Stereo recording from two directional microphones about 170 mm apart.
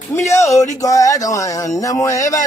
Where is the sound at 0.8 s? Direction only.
20° left (ahead or behind).